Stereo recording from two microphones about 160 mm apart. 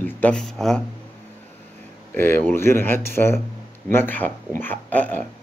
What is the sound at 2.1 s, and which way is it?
Speech, 15° left (ahead or behind).